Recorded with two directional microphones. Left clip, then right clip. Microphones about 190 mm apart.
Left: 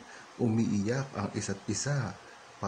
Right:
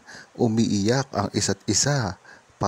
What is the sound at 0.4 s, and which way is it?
Speech, 45° right (ahead or behind).